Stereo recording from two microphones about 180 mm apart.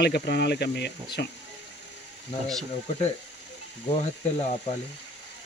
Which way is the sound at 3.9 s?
35° left (ahead or behind).